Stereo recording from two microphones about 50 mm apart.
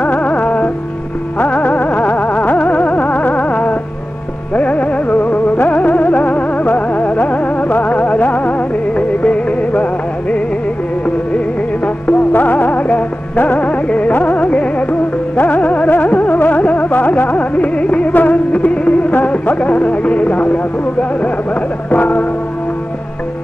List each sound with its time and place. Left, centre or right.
0.0 s music: left
11.3 s music: left
21.9 s music: left